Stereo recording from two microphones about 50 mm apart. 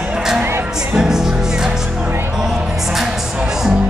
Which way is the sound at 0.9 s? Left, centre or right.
Centre.